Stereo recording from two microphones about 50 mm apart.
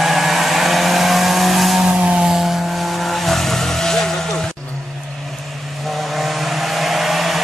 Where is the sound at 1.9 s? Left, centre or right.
Right.